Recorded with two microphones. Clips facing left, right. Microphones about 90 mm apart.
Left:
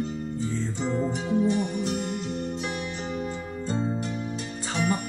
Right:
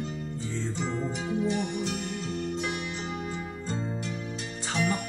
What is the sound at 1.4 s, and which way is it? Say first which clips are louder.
Music: left 3 dB; 40° left (ahead or behind).